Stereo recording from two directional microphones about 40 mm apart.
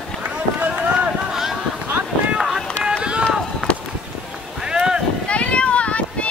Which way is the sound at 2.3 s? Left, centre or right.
Centre.